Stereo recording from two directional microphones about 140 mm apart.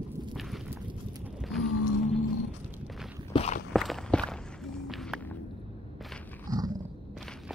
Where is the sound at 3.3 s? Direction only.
50° left (ahead or behind).